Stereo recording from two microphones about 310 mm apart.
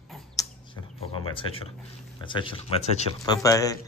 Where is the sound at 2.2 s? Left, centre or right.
Centre.